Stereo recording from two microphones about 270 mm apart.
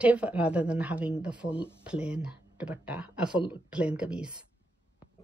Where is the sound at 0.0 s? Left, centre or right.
Centre.